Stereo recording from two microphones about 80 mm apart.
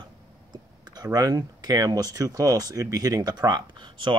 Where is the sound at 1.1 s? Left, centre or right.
Right.